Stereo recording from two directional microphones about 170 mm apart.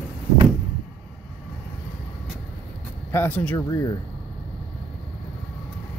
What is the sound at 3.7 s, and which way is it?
Speech, 20° left (ahead or behind).